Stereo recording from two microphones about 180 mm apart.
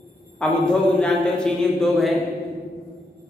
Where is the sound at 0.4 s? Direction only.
5° left (ahead or behind).